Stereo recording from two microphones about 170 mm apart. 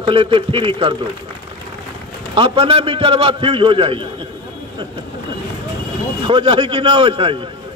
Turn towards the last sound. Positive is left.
turn(degrees=-30)  # may be behind; listen again after turning